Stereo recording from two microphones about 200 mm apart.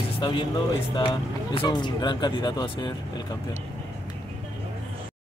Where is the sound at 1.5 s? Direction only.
20° left (ahead or behind).